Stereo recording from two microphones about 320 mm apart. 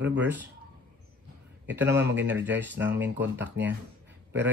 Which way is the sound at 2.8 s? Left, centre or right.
Centre.